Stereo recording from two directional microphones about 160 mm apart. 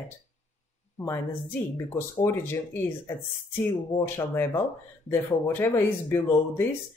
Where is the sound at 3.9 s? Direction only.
15° left (ahead or behind).